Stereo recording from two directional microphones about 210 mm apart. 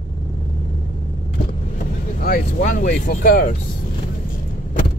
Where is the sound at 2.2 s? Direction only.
40° left (ahead or behind).